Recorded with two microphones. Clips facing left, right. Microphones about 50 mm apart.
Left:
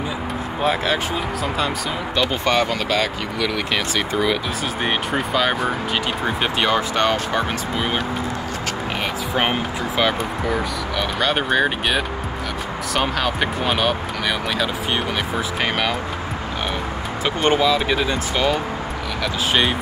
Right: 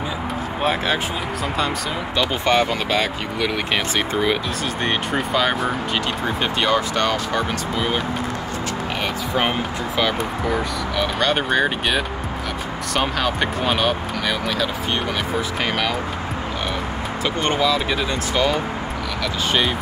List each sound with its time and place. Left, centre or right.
2.1 s speech: centre; by 4.4 s right
4.8 s speech: centre
6.2 s speech: centre
6.7 s speech: left
9.4 s speech: left
10.4 s speech: centre
17.2 s speech: centre